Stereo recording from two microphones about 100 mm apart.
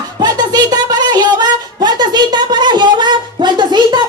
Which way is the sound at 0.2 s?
45° right (ahead or behind).